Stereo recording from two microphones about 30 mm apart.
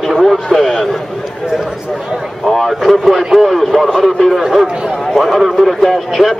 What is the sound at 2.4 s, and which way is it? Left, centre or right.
A man's voice, centre.